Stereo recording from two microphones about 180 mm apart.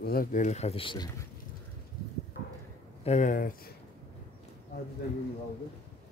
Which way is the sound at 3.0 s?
45° left (ahead or behind).